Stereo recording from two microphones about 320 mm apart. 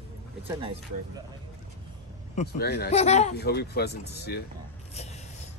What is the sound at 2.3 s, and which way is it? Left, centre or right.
Speech, left.